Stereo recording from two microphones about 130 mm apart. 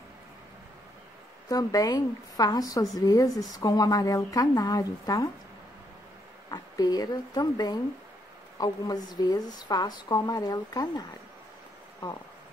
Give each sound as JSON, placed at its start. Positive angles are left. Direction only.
{"t": 1.5, "sound": "a woman's voice", "side_deg": 30}
{"t": 6.5, "sound": "speech", "side_deg": 30}